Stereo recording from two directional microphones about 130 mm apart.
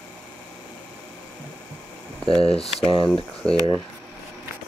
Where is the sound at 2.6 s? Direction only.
40° left (ahead or behind).